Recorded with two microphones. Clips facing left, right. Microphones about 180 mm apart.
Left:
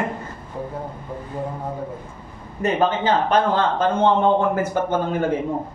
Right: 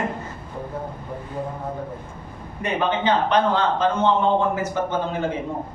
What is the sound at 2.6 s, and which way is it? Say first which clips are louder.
A man's voice: left 3 dB; 45° left (ahead or behind).